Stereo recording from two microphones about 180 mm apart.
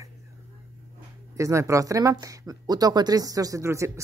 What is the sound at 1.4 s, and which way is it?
Speech, 15° right (ahead or behind).